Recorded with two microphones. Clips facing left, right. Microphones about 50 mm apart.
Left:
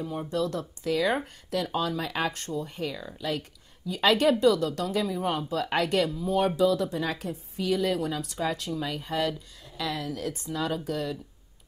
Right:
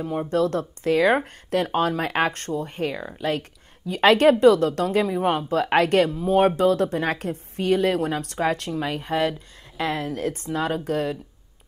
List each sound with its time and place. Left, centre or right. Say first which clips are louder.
0.0 s speech: right 7 dB; right